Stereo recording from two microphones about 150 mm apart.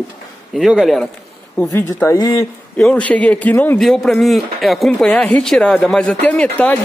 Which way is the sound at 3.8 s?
Centre (ahead or behind).